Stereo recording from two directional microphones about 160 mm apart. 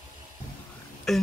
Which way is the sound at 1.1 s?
Centre (ahead or behind).